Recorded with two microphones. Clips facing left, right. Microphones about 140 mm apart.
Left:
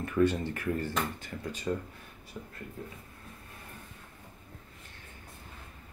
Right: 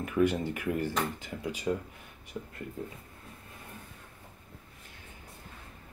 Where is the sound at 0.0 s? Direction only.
15° right (ahead or behind).